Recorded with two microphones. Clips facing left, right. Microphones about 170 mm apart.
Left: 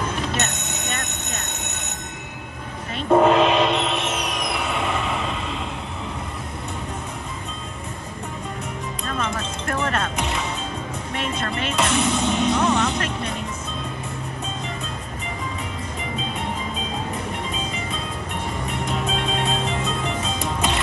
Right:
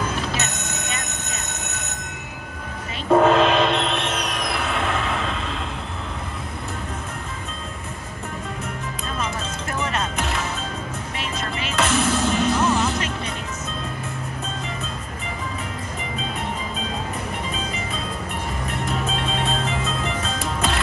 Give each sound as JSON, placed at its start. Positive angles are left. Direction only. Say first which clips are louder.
{"t": 0.3, "sound": "telephone bell ringing", "louder": "left 1 dB", "side_deg": 0}
{"t": 3.1, "sound": "music", "louder": "even", "side_deg": 0}
{"t": 9.2, "sound": "music", "louder": "even", "side_deg": 0}
{"t": 18.7, "sound": "music", "louder": "even", "side_deg": 0}